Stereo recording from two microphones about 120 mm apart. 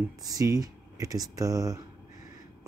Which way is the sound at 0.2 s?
30° right (ahead or behind).